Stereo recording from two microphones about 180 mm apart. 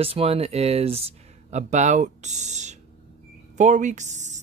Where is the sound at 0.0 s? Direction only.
30° right (ahead or behind).